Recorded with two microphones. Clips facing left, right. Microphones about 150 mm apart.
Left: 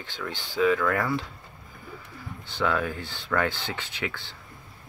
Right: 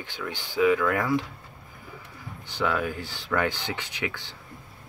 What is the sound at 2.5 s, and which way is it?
Speech, 10° right (ahead or behind).